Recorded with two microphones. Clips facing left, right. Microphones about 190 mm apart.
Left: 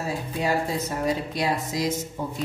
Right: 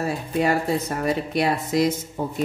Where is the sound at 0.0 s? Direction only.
60° right (ahead or behind).